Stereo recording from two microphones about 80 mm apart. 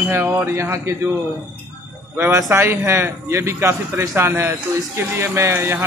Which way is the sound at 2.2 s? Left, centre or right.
Right.